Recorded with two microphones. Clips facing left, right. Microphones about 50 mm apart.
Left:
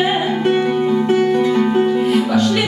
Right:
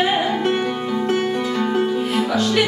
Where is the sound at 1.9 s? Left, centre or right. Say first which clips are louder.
Left 5 dB; centre.